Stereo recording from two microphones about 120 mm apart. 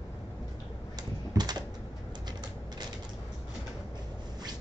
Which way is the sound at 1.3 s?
35° right (ahead or behind).